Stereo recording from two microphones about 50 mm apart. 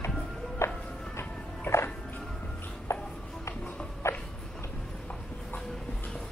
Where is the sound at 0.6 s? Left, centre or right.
Left.